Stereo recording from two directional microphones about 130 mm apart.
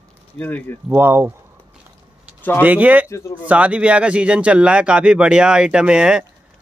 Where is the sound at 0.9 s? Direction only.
15° right (ahead or behind).